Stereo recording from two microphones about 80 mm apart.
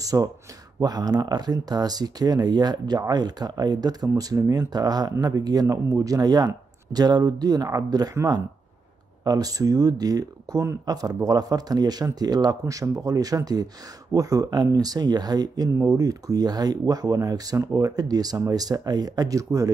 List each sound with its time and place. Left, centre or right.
0.0 s speech: right
9.2 s speech: right